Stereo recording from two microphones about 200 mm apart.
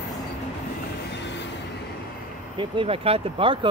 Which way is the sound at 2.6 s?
25° right (ahead or behind).